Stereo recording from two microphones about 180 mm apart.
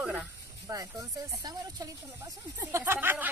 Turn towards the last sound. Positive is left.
turn(degrees=-10)  # may be behind; listen again after turning